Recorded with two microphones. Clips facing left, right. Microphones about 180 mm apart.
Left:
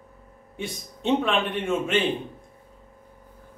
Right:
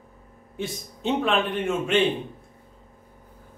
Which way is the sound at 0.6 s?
Centre (ahead or behind).